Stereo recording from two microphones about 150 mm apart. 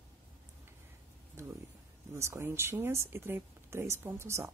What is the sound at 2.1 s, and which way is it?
Speech, 20° right (ahead or behind).